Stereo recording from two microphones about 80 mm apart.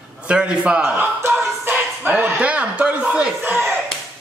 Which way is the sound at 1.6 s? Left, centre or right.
Right.